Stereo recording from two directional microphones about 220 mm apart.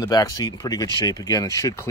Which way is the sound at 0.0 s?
15° left (ahead or behind).